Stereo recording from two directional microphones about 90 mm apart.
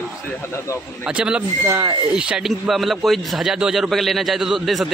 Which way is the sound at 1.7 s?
25° right (ahead or behind).